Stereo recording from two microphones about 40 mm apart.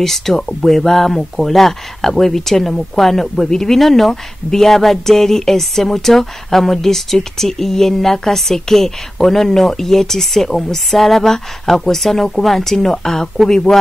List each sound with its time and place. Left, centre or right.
0.0 s speech: centre